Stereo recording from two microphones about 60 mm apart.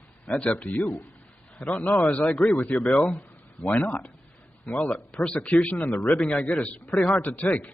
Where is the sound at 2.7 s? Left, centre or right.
Centre.